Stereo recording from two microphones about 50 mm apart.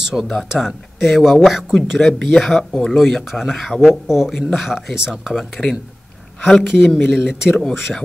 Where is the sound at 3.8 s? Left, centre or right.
Centre.